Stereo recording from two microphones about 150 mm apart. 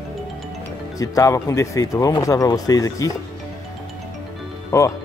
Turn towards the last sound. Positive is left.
turn(degrees=20)  # may be behind; listen again after turning